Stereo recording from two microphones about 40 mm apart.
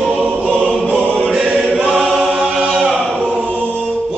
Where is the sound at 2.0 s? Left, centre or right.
Centre.